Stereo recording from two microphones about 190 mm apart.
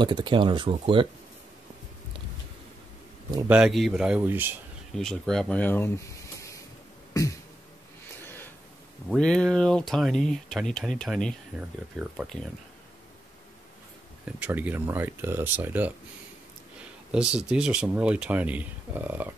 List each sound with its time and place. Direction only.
0.0 s speech: 25° right (ahead or behind)
3.4 s speech: 5° right (ahead or behind)
4.9 s speech: centre (ahead or behind)
7.2 s a sound: 20° left (ahead or behind)
9.1 s speech: 5° left (ahead or behind)
14.2 s speech: 10° right (ahead or behind)
17.1 s speech: 5° right (ahead or behind)